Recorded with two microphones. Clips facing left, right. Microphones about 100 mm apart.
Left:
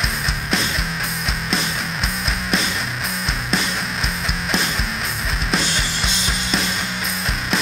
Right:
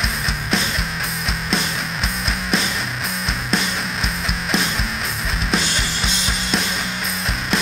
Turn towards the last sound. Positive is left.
turn(degrees=0)  # may be behind; listen again after turning